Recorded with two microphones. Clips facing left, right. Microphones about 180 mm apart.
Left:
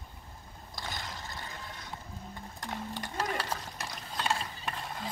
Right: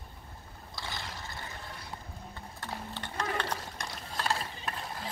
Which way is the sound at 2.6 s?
15° left (ahead or behind).